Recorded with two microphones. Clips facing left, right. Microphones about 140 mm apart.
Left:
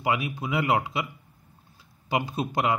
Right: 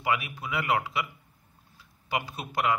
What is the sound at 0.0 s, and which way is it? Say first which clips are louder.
Speech: left 3 dB; 30° left (ahead or behind).